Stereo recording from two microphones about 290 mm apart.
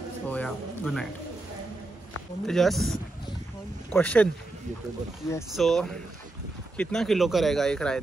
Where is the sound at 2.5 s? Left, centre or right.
Centre.